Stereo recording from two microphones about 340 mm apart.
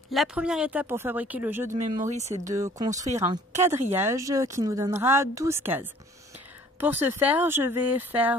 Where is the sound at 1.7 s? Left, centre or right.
Right.